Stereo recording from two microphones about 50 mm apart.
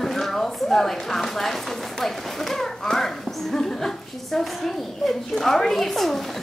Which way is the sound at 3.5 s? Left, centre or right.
Centre.